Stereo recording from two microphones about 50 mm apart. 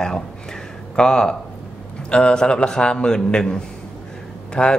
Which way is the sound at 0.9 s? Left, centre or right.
Centre.